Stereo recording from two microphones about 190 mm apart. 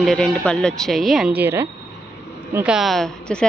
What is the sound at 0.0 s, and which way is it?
A woman's voice, 5° left (ahead or behind).